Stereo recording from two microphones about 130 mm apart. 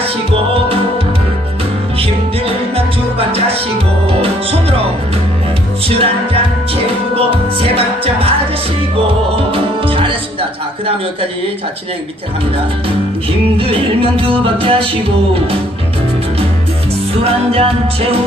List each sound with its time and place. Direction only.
3.2 s music: 50° right (ahead or behind)
7.2 s music: 50° right (ahead or behind)
9.5 s music: 45° right (ahead or behind)
13.6 s music: 45° right (ahead or behind)
17.2 s music: 45° right (ahead or behind)